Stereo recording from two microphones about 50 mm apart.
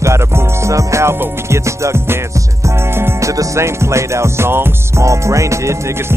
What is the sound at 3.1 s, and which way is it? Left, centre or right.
Music, right.